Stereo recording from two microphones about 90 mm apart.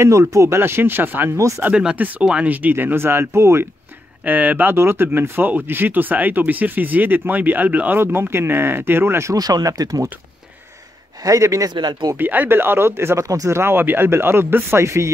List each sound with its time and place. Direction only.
0.0 s speech: 35° right (ahead or behind)
1.6 s speech: 10° right (ahead or behind); by 3.6 s 30° right (ahead or behind)
4.2 s speech: 15° right (ahead or behind)
9.3 s speech: 45° right (ahead or behind)
11.2 s speech: 35° right (ahead or behind)
11.7 s speech: 55° right (ahead or behind)
12.2 s speech: 20° right (ahead or behind)